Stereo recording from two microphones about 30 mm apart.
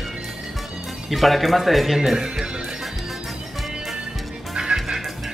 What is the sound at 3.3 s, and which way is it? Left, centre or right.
Music, centre.